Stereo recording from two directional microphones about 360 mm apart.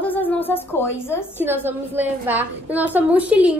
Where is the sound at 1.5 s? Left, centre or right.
Centre.